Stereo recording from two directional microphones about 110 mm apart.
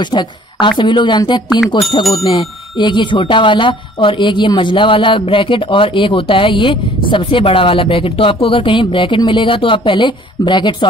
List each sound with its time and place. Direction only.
0.0 s speech: 45° left (ahead or behind)